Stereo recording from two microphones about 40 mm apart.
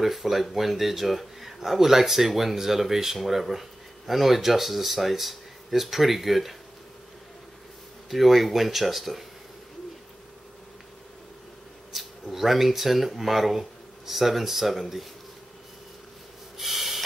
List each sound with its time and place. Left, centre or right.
0.0 s speech: centre
8.1 s speech: centre
11.9 s speech: centre
16.5 s snort: centre